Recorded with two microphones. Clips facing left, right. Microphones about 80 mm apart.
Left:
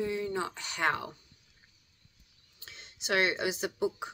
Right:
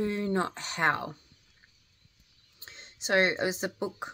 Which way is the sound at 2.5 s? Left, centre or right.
Right.